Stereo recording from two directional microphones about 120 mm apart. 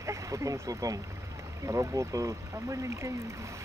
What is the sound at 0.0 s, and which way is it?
Speech, 25° right (ahead or behind).